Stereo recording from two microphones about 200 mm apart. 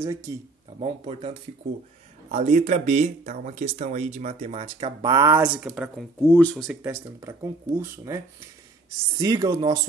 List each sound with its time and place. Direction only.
0.0 s speech: 15° right (ahead or behind)
0.7 s speech: 30° right (ahead or behind)
2.3 s speech: 35° right (ahead or behind); by 6.0 s 5° right (ahead or behind)
6.2 s speech: 10° left (ahead or behind)
6.8 s speech: 10° right (ahead or behind)
9.2 s speech: 20° right (ahead or behind)